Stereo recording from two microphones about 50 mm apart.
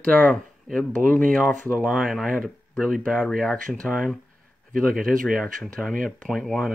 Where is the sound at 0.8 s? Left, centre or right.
Left.